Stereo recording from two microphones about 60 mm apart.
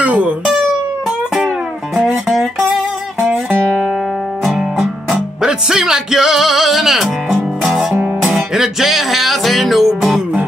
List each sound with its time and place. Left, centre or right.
0.0 s speech: right
2.0 s music: centre
4.5 s music: centre